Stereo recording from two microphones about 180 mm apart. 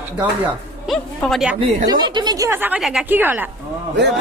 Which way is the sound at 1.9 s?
25° right (ahead or behind).